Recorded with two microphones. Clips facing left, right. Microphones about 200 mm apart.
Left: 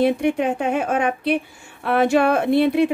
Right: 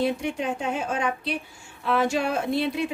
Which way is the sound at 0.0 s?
60° left (ahead or behind).